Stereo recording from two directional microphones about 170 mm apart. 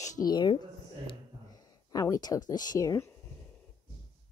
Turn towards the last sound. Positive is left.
turn(degrees=20)  # may be behind; listen again after turning